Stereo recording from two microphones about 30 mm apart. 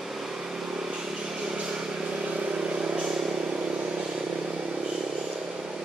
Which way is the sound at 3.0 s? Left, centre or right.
Right.